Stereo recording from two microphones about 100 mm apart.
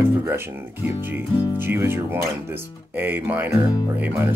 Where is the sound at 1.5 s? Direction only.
20° right (ahead or behind).